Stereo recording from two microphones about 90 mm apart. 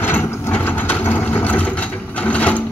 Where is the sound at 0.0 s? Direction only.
25° left (ahead or behind).